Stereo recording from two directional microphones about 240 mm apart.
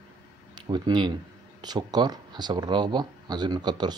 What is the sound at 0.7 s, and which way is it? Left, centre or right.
Speech, centre.